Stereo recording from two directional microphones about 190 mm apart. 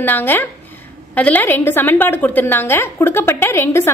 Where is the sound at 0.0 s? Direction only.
10° left (ahead or behind).